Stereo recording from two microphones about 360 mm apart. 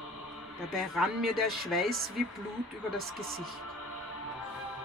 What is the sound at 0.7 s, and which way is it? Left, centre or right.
Speech, centre.